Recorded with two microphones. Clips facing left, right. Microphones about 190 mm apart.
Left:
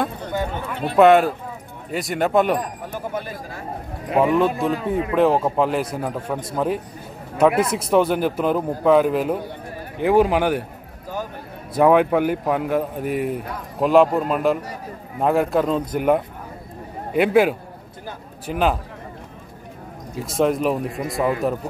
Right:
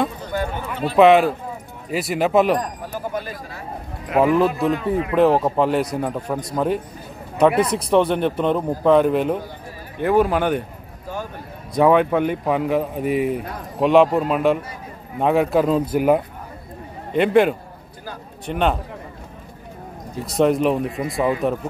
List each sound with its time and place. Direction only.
0.3 s a sound: 20° left (ahead or behind)
0.9 s a man's voice: centre (ahead or behind)
4.2 s a man's voice: centre (ahead or behind)
9.9 s a man's voice: 15° left (ahead or behind)
11.7 s a man's voice: 5° left (ahead or behind)
17.1 s a man's voice: 5° left (ahead or behind)
20.2 s a man's voice: centre (ahead or behind)